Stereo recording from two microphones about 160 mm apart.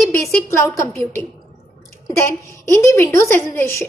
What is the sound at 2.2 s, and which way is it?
A woman's voice, 20° left (ahead or behind).